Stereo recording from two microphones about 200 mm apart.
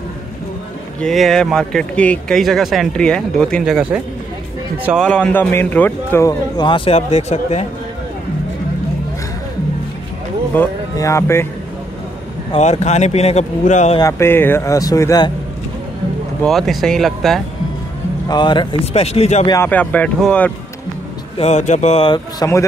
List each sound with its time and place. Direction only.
1.0 s a man's voice: centre (ahead or behind); by 7.6 s 35° left (ahead or behind)
10.5 s speech: 10° left (ahead or behind)
12.5 s a man's voice: 35° left (ahead or behind)
13.9 s a man's voice: 15° left (ahead or behind)
16.4 s speech: centre (ahead or behind)
18.3 s a man's voice: 25° left (ahead or behind)
19.5 s a man's voice: 10° left (ahead or behind)
21.4 s a man's voice: 35° left (ahead or behind); by 22.7 s 15° left (ahead or behind)